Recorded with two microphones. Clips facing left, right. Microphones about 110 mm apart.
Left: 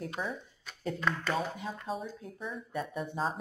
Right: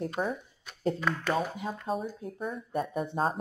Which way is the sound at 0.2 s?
50° right (ahead or behind).